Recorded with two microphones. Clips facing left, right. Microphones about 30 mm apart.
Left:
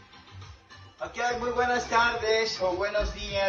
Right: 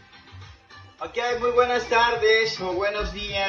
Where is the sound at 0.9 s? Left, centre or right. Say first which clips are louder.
Right 3 dB; right.